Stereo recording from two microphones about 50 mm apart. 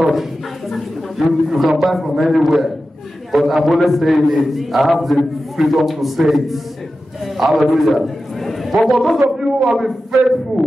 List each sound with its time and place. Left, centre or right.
0.0 s a man's voice: centre